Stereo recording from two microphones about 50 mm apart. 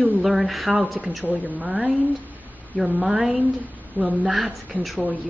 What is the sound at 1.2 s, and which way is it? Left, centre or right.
Speech, right.